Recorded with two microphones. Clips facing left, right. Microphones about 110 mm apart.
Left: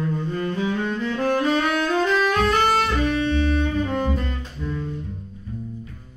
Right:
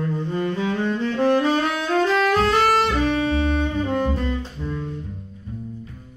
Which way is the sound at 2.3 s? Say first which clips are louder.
Right 1 dB; 30° right (ahead or behind).